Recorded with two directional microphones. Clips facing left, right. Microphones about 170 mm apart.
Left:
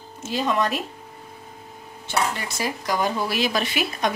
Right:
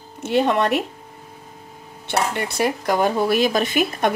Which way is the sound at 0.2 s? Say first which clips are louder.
Right 5 dB; 65° right (ahead or behind).